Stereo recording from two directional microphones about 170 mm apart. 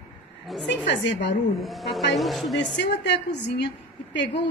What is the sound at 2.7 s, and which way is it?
A woman's voice, 90° left.